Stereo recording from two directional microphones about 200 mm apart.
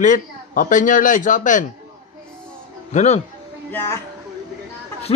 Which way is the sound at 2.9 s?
35° left (ahead or behind).